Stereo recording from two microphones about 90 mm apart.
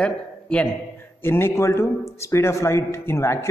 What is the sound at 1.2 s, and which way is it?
A man's voice, 30° left (ahead or behind).